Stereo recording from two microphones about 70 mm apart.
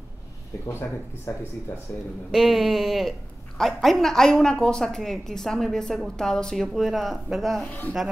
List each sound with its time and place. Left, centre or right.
1.3 s speech: left
2.3 s a woman's voice: centre
7.6 s speech: left